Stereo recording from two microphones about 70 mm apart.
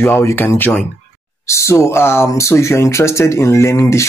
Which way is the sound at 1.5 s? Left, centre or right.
Left.